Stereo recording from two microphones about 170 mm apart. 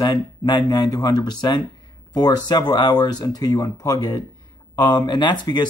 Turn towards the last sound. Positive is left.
turn(degrees=25)  # may be behind; listen again after turning